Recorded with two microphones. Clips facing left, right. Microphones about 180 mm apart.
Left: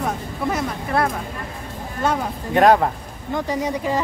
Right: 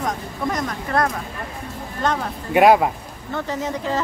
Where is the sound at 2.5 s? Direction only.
10° right (ahead or behind).